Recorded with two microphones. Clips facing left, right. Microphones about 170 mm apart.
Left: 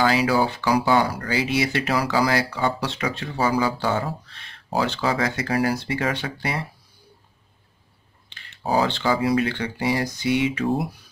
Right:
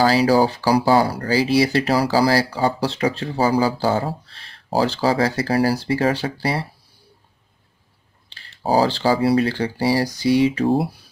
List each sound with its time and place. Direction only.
0.0 s speech: 35° right (ahead or behind)
8.3 s speech: 35° right (ahead or behind)